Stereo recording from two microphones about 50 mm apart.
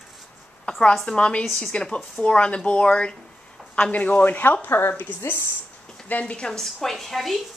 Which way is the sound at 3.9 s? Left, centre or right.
Left.